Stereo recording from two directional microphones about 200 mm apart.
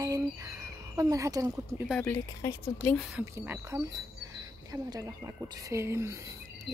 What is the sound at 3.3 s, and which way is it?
Speech, 15° right (ahead or behind).